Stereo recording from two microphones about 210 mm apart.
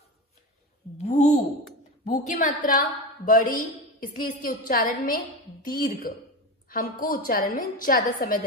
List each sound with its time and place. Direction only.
0.9 s a woman's voice: 35° left (ahead or behind)